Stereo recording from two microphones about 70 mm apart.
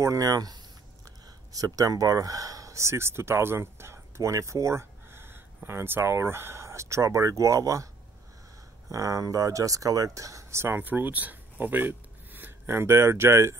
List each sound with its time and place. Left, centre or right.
0.0 s speech: right
8.9 s speech: right
10.8 s speech: right